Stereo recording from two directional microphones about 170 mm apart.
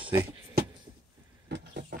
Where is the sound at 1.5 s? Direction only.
90° right.